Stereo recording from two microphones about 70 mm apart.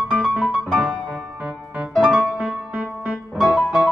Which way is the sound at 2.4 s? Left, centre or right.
Centre.